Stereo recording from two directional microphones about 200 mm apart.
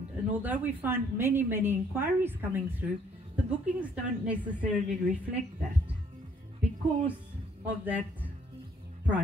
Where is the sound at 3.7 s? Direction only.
5° right (ahead or behind).